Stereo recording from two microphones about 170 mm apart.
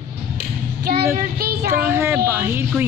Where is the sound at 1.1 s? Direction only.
60° right (ahead or behind).